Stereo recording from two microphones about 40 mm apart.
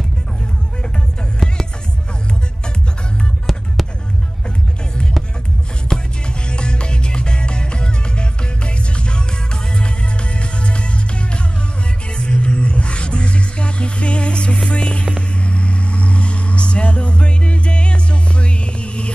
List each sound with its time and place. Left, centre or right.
1.4 s music: centre
3.5 s music: centre
5.9 s music: centre
6.2 s music: left
15.1 s vehicle: left
18.4 s music: left